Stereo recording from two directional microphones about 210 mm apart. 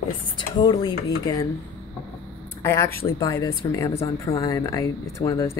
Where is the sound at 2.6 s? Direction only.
10° left (ahead or behind).